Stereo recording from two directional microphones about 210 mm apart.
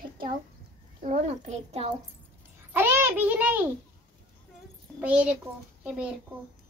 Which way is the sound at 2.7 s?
10° right (ahead or behind).